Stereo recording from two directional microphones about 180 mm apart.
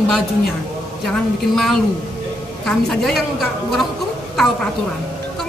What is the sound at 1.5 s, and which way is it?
A woman's voice, centre (ahead or behind).